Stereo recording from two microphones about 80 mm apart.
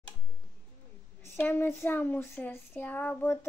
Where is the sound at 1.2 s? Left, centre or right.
Left.